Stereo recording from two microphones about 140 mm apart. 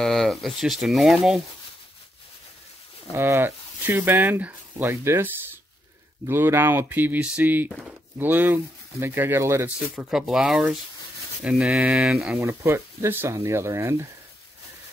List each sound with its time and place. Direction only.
0.0 s speech: centre (ahead or behind)
3.1 s speech: 20° right (ahead or behind)
9.9 s speech: centre (ahead or behind)
12.4 s speech: 20° right (ahead or behind)